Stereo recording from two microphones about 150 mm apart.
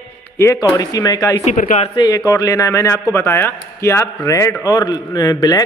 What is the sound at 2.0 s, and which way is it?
A man's voice, 25° left (ahead or behind).